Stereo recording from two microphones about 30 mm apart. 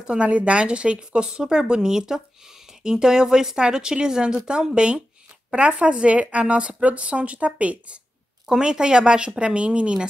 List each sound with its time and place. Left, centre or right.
0.0 s a woman's voice: right
1.2 s a woman's voice: right
8.5 s a woman's voice: right